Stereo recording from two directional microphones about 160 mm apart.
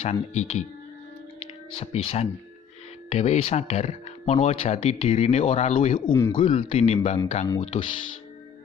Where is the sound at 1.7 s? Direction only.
35° left (ahead or behind).